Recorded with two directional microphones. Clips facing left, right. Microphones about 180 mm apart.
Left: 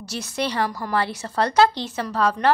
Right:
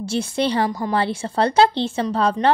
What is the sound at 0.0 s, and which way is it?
Speech, 25° right (ahead or behind).